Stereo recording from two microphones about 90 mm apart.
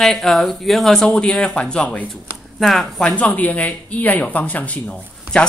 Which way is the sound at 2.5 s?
Centre (ahead or behind).